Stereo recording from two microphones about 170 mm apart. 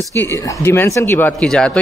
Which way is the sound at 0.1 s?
15° left (ahead or behind).